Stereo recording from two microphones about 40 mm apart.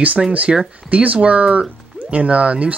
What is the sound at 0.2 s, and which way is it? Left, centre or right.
Speech, centre.